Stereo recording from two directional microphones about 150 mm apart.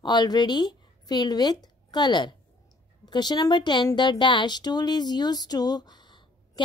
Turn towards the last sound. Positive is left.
turn(degrees=30)  # may be behind; listen again after turning